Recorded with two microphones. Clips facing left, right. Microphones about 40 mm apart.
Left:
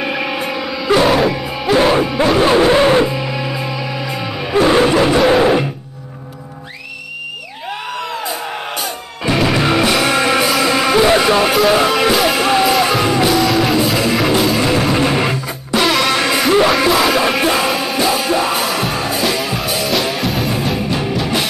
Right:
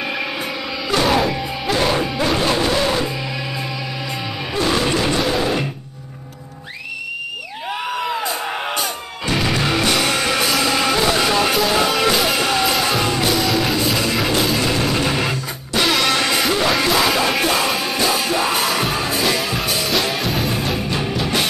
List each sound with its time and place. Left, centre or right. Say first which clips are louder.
0.0 s music: left 4 dB; centre
2.4 s a sound: left 10 dB; left
3.1 s music: left 5 dB; centre
4.6 s music: left 8 dB; left
8.3 s music: even; centre
9.2 s music: left 5 dB; centre
12.4 s music: left 5 dB; centre
12.6 s music: left 5 dB; centre
15.7 s music: left 3 dB; centre